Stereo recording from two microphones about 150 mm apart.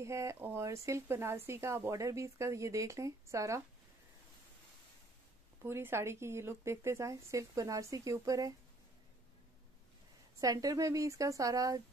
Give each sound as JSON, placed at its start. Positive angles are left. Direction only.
{"t": 0.0, "sound": "speech", "side_deg": -20}
{"t": 5.6, "sound": "speech", "side_deg": -15}
{"t": 10.4, "sound": "speech", "side_deg": -25}